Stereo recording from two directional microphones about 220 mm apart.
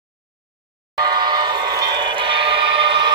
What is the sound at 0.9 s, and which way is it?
Train, 20° right (ahead or behind).